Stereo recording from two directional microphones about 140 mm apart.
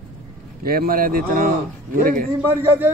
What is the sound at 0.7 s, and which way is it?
Speech, 90° right.